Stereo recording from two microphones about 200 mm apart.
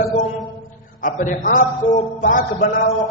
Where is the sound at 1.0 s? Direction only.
40° left (ahead or behind).